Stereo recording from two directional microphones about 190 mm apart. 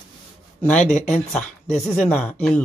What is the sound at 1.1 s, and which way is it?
Speech, 5° left (ahead or behind).